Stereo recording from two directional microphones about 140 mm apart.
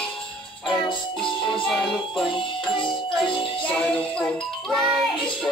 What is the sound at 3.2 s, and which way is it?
Music, 40° left (ahead or behind).